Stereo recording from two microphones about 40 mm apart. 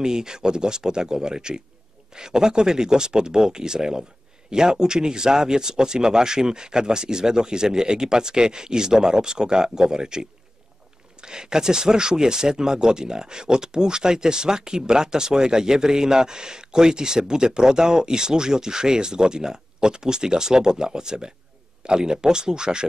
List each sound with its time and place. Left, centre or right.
0.0 s speech: centre